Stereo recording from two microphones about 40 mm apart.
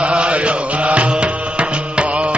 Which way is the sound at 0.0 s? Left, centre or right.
Right.